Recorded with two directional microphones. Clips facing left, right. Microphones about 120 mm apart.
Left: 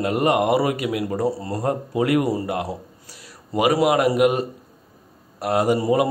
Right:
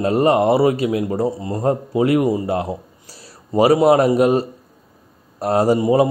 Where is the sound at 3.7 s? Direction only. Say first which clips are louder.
Right 3 dB; 35° right (ahead or behind).